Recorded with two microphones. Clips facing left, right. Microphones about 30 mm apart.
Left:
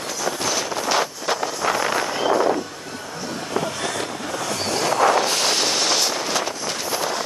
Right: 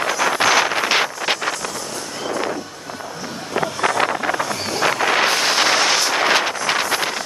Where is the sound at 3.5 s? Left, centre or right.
Right.